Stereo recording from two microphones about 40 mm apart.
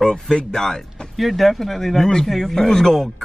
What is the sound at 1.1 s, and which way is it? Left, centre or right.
Speech, centre.